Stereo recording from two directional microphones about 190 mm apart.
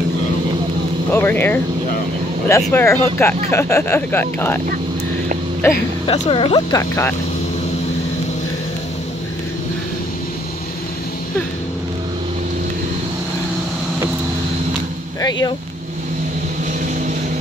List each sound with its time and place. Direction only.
1.1 s speech: 10° left (ahead or behind)
2.7 s speech: 15° left (ahead or behind)
5.6 s speech: 15° left (ahead or behind)
6.0 s speech: 35° left (ahead or behind)
6.8 s speech: 15° left (ahead or behind)